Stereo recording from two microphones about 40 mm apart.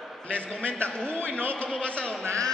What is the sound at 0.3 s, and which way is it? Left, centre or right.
A man's voice, left.